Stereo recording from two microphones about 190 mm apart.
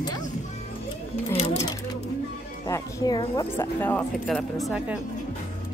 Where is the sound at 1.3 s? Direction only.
30° left (ahead or behind).